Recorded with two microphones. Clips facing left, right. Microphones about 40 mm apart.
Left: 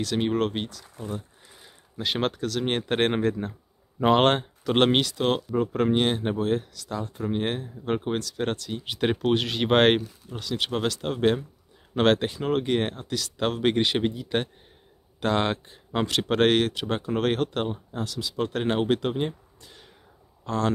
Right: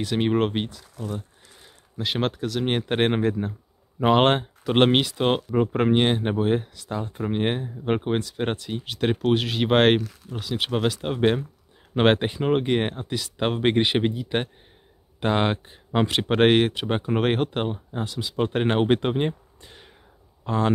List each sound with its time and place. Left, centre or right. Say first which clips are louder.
0.0 s speech: right 2 dB; right
0.8 s speech: right 2 dB; left
1.5 s speech: right 1 dB; centre; by 8.8 s right
8.8 s speech: right 1 dB; centre